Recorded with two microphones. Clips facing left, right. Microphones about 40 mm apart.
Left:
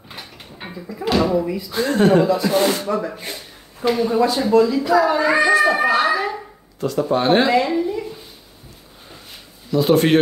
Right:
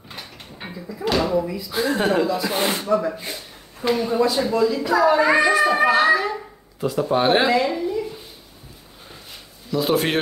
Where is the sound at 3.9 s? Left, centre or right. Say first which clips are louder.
Left 2 dB; centre.